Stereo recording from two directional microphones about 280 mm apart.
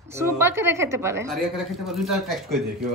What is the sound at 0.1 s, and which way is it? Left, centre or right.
A woman's voice, centre.